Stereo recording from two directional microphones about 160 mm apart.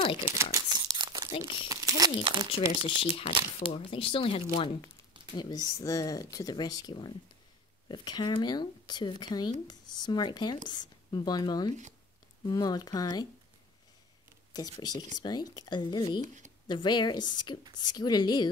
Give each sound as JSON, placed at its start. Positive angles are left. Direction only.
{"t": 0.0, "sound": "speech", "side_deg": 35}
{"t": 0.4, "sound": "crumpling", "side_deg": -20}
{"t": 3.0, "sound": "speech", "side_deg": 35}
{"t": 5.3, "sound": "speech", "side_deg": 25}
{"t": 14.5, "sound": "speech", "side_deg": 25}
{"t": 16.2, "sound": "speech", "side_deg": -50}
{"t": 16.6, "sound": "speech", "side_deg": 30}